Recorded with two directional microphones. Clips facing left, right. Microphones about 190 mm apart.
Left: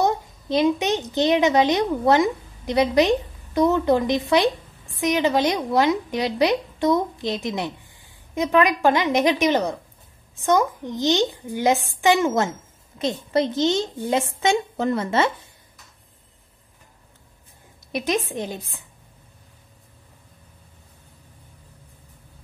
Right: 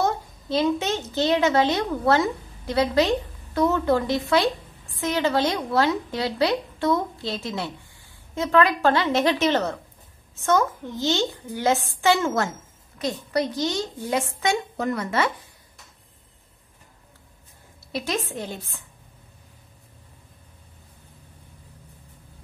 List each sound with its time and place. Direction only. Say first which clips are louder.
0.0 s a woman's voice: left 3 dB; 15° left (ahead or behind)
17.9 s a woman's voice: left 4 dB; 20° left (ahead or behind)